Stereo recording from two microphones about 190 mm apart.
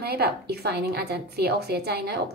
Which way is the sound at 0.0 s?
55° right (ahead or behind).